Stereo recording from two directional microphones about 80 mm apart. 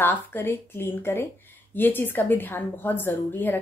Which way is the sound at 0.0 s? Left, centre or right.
Left.